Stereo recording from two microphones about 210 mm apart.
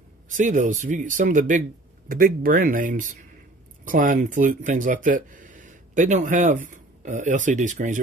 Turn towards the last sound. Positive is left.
turn(degrees=-35)  # may be behind; listen again after turning